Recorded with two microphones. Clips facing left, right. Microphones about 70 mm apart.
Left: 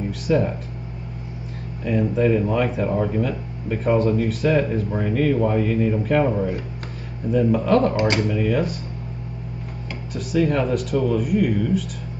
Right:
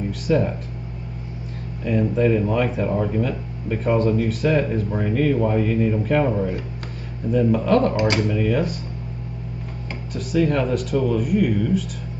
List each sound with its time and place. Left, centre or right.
0.1 s speech: centre
1.9 s speech: centre
7.9 s speech: left
8.3 s speech: centre
10.1 s speech: centre